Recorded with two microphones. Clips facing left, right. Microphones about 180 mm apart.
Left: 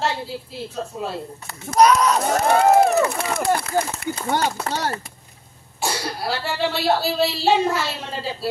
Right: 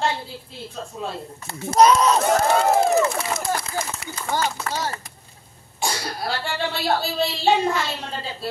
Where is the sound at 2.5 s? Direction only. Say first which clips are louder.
Left 7 dB; 60° left (ahead or behind).